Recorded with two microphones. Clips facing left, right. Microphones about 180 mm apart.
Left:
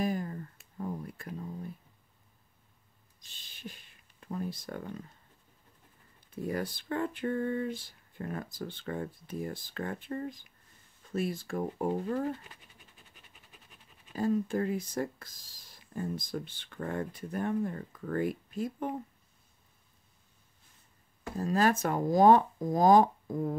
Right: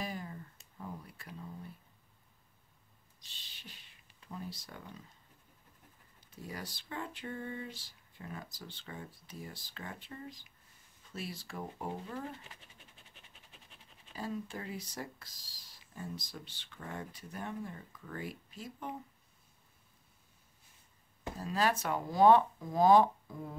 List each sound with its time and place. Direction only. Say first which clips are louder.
0.0 s a sound: left 9 dB; 50° left (ahead or behind)
3.2 s a sound: left 7 dB; 50° left (ahead or behind)
6.3 s speech: left 11 dB; 55° left (ahead or behind)
13.3 s pant: left 1 dB; 5° left (ahead or behind)
14.1 s speech: left 11 dB; 50° left (ahead or behind)
21.4 s speech: left 6 dB; 45° left (ahead or behind)